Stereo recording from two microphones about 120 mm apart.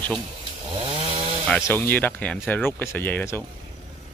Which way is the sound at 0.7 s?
45° right (ahead or behind).